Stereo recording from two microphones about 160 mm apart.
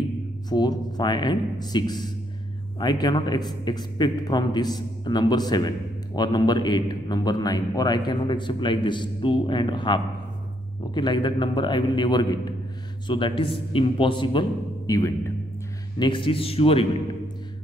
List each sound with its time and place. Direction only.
0.5 s a man's voice: 25° left (ahead or behind)
11.0 s a man's voice: 30° left (ahead or behind)
16.0 s a man's voice: 30° left (ahead or behind)